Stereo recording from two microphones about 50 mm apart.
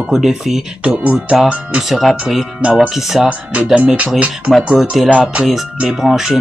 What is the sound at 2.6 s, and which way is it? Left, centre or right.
Speech, right.